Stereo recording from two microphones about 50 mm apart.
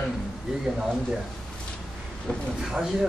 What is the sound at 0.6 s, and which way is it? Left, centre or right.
Speech, centre.